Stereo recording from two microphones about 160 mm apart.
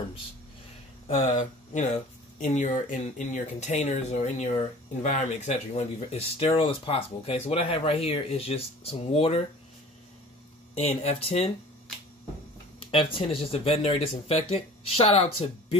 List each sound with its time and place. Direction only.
1.1 s speech: 50° left (ahead or behind)
10.7 s speech: 40° left (ahead or behind)
12.9 s speech: 35° left (ahead or behind)